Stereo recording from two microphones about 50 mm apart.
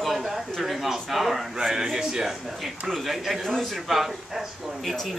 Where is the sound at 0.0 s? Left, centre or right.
Centre.